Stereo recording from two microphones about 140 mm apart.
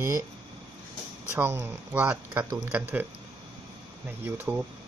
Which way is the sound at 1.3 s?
15° right (ahead or behind).